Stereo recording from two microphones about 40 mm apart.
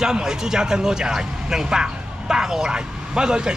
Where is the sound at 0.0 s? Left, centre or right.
Centre.